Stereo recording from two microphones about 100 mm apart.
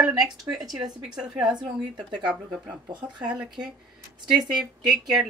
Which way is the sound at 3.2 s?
5° right (ahead or behind).